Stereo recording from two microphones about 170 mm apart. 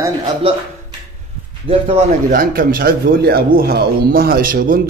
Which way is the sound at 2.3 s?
60° right (ahead or behind).